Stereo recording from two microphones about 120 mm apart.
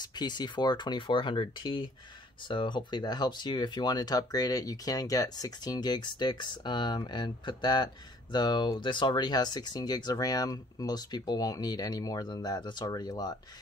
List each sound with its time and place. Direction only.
0.0 s speech: 35° left (ahead or behind)